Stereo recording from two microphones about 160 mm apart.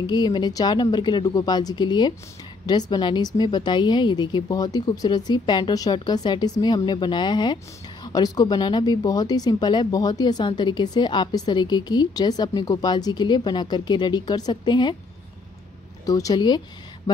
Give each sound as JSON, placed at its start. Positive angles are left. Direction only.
{"t": 0.0, "sound": "speech", "side_deg": 25}
{"t": 16.1, "sound": "speech", "side_deg": 20}